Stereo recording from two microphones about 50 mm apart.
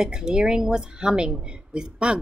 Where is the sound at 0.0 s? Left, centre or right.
Centre.